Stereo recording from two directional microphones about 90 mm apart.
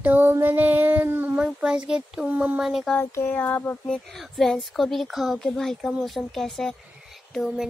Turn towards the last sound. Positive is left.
turn(degrees=0)  # may be behind; listen again after turning